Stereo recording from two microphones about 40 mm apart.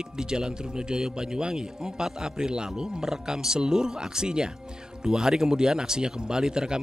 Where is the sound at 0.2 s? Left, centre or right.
Centre.